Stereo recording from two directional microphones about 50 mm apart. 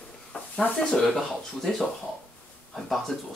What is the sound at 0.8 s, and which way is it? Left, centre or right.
Speech, centre.